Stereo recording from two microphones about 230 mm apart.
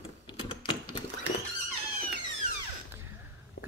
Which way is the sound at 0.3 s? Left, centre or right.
Left.